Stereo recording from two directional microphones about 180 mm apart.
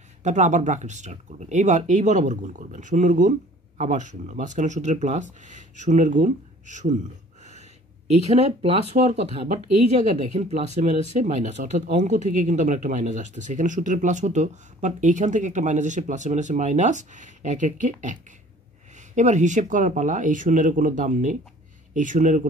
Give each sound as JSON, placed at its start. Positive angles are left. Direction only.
{"t": 0.2, "sound": "speech", "side_deg": -40}
{"t": 8.1, "sound": "speech", "side_deg": -35}
{"t": 19.1, "sound": "speech", "side_deg": -40}